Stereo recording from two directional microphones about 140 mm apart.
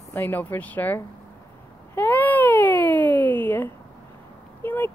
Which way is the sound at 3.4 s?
15° left (ahead or behind).